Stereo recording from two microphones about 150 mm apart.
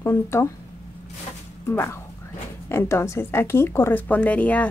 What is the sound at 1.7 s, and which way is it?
Speech, 15° left (ahead or behind).